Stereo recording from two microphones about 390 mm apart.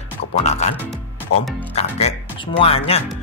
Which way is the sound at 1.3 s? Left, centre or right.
Left.